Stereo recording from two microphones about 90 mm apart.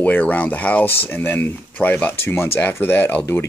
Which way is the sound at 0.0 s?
15° left (ahead or behind).